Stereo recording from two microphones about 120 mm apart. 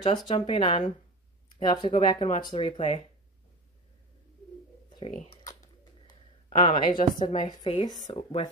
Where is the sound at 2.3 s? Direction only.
50° left (ahead or behind).